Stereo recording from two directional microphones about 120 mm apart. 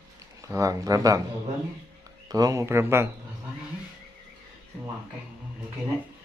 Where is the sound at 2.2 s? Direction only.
30° right (ahead or behind).